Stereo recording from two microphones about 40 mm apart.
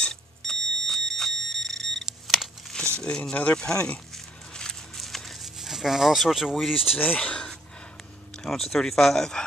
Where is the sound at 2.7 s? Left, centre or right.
Left.